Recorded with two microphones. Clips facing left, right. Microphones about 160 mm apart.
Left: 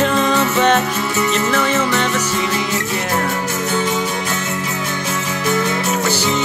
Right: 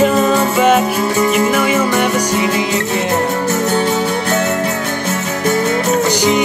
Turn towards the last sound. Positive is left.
turn(degrees=-15)  # may be behind; listen again after turning